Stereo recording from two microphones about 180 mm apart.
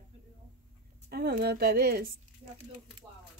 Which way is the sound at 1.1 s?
60° right (ahead or behind).